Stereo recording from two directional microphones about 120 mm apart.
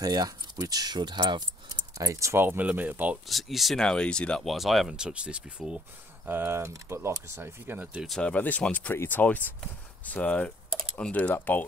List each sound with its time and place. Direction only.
0.0 s speech: 30° right (ahead or behind)
2.0 s speech: 25° right (ahead or behind)
3.3 s speech: centre (ahead or behind); by 8.0 s 15° right (ahead or behind)
8.2 s speech: 10° left (ahead or behind)